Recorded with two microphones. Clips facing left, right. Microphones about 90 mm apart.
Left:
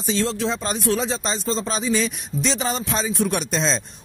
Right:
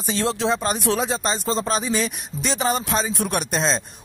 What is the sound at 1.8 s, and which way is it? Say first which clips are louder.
Speech: left 1 dB; 55° right (ahead or behind).